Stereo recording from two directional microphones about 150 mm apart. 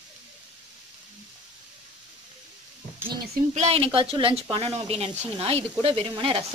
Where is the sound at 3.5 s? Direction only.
45° right (ahead or behind).